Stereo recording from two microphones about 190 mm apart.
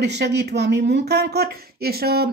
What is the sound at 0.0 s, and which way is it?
Speech, 60° right (ahead or behind).